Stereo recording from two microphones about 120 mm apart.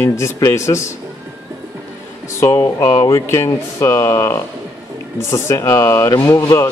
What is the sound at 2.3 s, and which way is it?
Speech, 25° left (ahead or behind).